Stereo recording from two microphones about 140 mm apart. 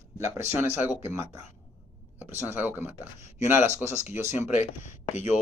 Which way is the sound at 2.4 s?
15° right (ahead or behind).